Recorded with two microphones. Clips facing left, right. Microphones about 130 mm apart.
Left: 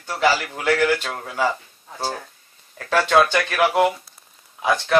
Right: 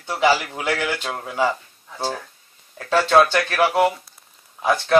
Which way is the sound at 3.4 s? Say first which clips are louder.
Even; 5° right (ahead or behind).